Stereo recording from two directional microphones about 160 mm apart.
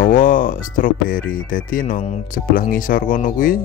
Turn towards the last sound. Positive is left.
turn(degrees=60)  # may be behind; listen again after turning